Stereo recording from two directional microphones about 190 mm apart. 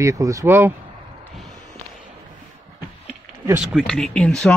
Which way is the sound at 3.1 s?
5° right (ahead or behind).